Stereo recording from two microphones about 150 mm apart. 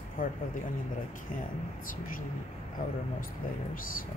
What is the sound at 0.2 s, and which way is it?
Speech, 65° left (ahead or behind).